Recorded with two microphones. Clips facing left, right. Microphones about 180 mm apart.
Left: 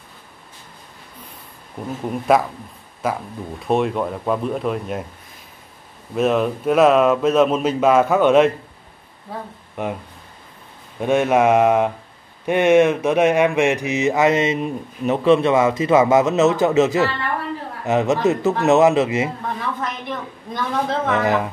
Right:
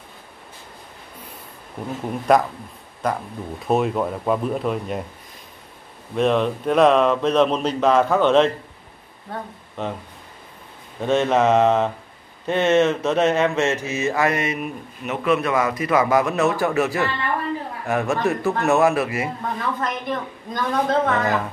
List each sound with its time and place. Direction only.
1.8 s speech: centre (ahead or behind)
6.1 s speech: 5° left (ahead or behind)
11.0 s speech: 10° left (ahead or behind)
19.8 s speech: centre (ahead or behind)
21.1 s speech: 20° left (ahead or behind)